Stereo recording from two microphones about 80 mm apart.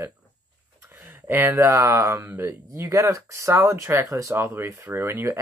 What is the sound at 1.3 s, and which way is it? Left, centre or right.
Speech, right.